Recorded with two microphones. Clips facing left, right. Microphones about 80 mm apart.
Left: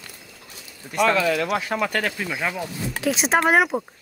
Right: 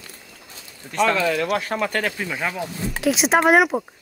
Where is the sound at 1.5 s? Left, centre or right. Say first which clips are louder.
Right 1 dB; right.